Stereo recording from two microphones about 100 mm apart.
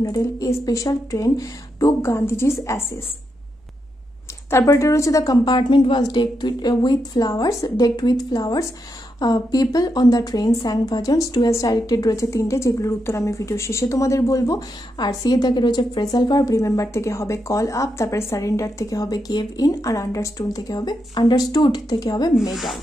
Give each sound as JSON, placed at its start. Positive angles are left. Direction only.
{"t": 0.0, "sound": "a woman's voice", "side_deg": 35}
{"t": 4.5, "sound": "a woman's voice", "side_deg": 30}
{"t": 22.5, "sound": "speech", "side_deg": 0}